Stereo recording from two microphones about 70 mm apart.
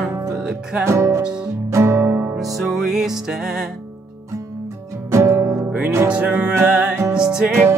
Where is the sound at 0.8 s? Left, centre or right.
Right.